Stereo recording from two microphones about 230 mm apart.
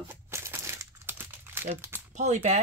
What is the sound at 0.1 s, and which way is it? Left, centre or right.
Crumpling, centre.